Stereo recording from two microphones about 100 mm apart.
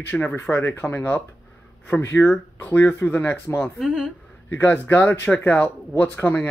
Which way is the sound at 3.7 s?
5° right (ahead or behind).